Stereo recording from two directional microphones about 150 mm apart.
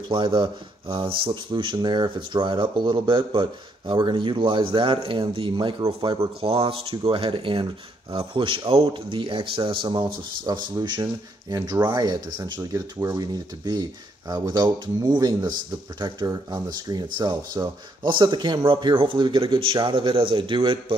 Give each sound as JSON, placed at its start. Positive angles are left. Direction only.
{"t": 0.1, "sound": "speech", "side_deg": -30}